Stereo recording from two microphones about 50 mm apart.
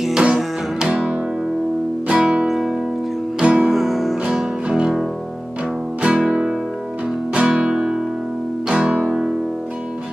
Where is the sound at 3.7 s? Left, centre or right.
Centre.